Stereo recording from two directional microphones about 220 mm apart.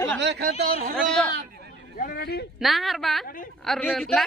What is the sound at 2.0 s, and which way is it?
Speech, 45° left (ahead or behind).